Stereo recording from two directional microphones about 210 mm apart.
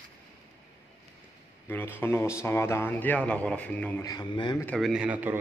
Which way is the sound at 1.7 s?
10° left (ahead or behind).